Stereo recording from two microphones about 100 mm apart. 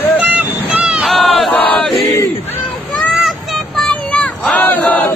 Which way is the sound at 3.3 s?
Centre (ahead or behind).